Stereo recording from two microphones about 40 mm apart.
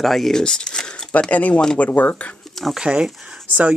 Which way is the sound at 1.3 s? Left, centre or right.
Left.